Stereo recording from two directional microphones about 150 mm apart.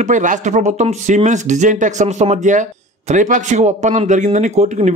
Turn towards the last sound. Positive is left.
turn(degrees=-55)  # may be behind; listen again after turning